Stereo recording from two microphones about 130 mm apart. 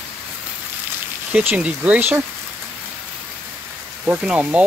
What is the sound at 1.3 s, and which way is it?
Speech, 10° right (ahead or behind).